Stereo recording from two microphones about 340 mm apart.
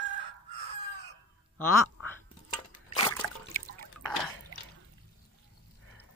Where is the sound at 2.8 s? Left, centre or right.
Centre.